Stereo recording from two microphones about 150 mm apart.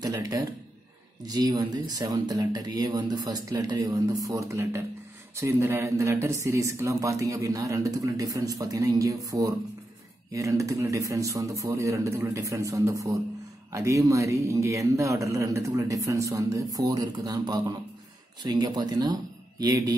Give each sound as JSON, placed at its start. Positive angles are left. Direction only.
{"t": 0.0, "sound": "a man's voice", "side_deg": -25}